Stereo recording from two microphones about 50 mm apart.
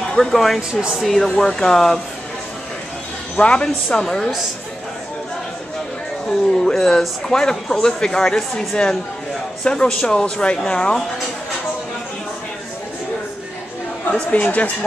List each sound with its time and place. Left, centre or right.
0.1 s speech: centre
0.6 s speech: centre
1.0 s speech: centre
1.3 s speech: centre
3.3 s speech: left
6.2 s speech: centre
14.3 s speech: left